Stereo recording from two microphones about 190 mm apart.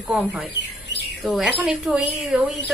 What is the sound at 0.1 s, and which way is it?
Speech, 5° right (ahead or behind).